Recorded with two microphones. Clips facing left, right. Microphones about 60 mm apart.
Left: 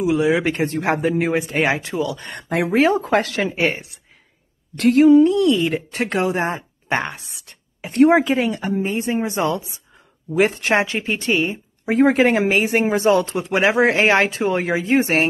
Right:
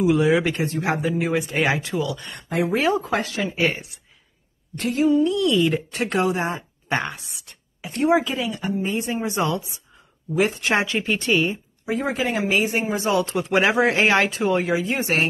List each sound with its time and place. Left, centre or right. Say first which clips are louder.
0.0 s speech: even; centre
0.4 s speech: left 2 dB; left
1.3 s speech: left 2 dB; left
3.2 s speech: left 5 dB; left
3.5 s speech: right 1 dB; left
4.7 s a sound: left 8 dB; left
5.2 s speech: left 4 dB; left
8.8 s speech: left 3 dB; left
10.3 s speech: left 3 dB; left
11.9 s speech: left 9 dB; left
13.6 s speech: left 3 dB; left